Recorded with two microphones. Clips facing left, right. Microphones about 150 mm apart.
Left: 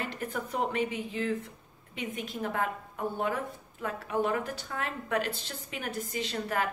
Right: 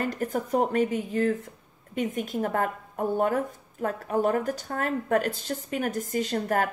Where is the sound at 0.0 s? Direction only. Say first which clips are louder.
Right 7 dB; 40° right (ahead or behind).